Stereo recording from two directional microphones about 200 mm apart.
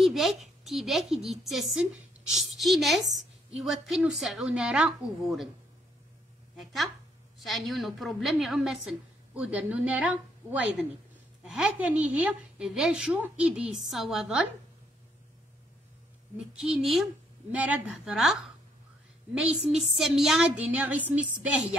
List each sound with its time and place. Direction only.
0.0 s a woman's voice: centre (ahead or behind)
6.5 s a woman's voice: centre (ahead or behind)
16.5 s a woman's voice: 5° right (ahead or behind)